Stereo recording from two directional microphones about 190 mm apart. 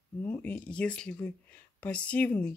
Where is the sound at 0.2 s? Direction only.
10° left (ahead or behind).